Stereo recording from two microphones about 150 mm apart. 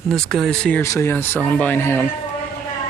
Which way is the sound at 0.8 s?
20° left (ahead or behind).